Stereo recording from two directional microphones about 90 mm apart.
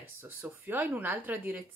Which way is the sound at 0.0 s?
25° right (ahead or behind).